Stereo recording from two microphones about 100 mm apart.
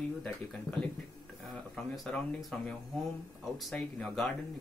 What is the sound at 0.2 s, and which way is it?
Speech, 10° left (ahead or behind).